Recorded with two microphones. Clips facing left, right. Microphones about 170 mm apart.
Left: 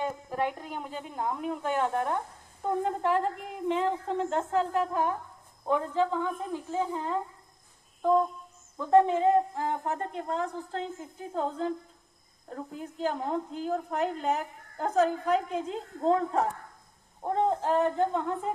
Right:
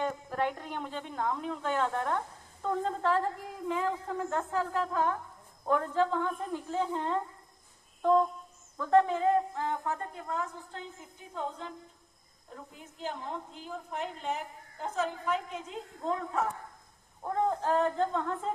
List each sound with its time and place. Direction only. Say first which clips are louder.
0.0 s a woman's voice: left 1 dB; 10° left (ahead or behind)
8.0 s a sound: left 1 dB; 10° left (ahead or behind)
8.7 s a woman's voice: left 3 dB; 20° left (ahead or behind); by 11.7 s 40° left (ahead or behind)
12.4 s a woman's voice: left 10 dB; 50° left (ahead or behind); by 16.4 s 35° left (ahead or behind)
17.2 s speech: left 3 dB; 25° left (ahead or behind)